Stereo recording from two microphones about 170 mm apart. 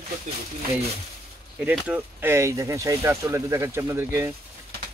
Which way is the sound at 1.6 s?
5° right (ahead or behind).